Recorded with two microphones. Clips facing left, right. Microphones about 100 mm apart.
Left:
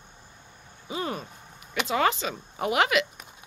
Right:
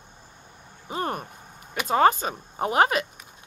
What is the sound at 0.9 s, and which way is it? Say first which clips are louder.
Speech: right 2 dB; 55° right (ahead or behind).